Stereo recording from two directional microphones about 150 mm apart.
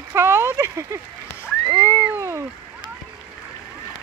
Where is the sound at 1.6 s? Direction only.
25° right (ahead or behind).